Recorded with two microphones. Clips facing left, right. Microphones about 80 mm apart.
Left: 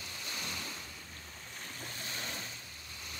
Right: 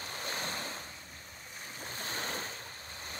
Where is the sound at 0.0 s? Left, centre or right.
Right.